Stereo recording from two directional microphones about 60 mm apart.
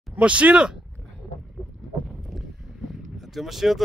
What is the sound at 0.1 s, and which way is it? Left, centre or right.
Speech, right.